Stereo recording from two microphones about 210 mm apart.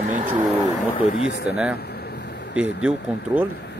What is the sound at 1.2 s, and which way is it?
Speech, 55° left (ahead or behind).